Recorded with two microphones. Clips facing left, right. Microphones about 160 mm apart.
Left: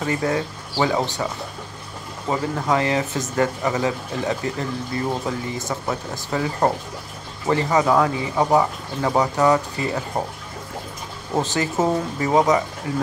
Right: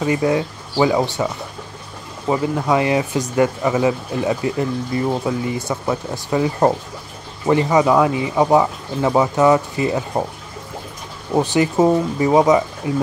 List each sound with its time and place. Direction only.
0.0 s speech: 20° right (ahead or behind)
2.2 s speech: 15° right (ahead or behind)
11.3 s speech: 15° right (ahead or behind)